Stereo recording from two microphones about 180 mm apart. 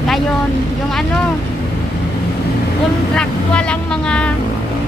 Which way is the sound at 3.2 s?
5° left (ahead or behind).